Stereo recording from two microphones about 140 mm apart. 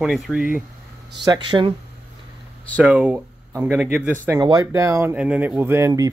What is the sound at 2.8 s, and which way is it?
Speech, 10° right (ahead or behind).